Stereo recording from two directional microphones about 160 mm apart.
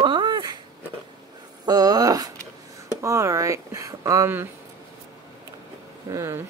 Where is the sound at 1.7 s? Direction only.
25° right (ahead or behind).